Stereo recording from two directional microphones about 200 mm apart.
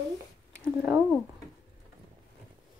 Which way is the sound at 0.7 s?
10° right (ahead or behind).